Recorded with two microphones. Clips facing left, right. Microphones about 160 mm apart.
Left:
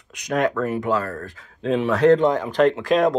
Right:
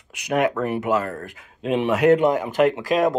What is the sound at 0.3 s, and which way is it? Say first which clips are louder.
Speech: even; 15° right (ahead or behind).